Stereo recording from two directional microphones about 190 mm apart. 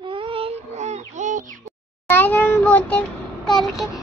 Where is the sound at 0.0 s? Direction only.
25° right (ahead or behind).